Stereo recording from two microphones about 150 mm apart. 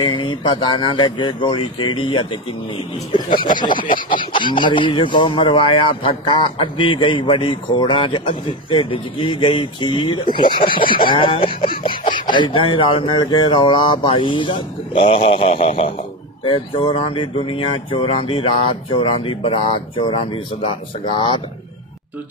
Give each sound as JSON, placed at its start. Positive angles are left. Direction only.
{"t": 0.0, "sound": "speech", "side_deg": 30}